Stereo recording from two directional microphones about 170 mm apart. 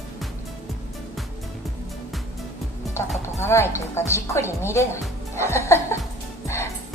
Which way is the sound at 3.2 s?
15° left (ahead or behind).